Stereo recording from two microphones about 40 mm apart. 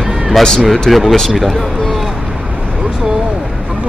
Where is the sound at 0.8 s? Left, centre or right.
Centre.